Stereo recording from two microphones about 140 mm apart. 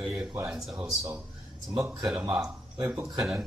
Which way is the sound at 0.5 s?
Centre (ahead or behind).